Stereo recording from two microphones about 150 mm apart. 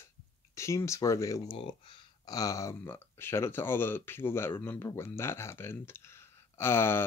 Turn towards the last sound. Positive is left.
turn(degrees=15)  # may be behind; listen again after turning